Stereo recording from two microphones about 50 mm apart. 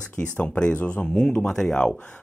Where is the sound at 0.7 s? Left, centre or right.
Left.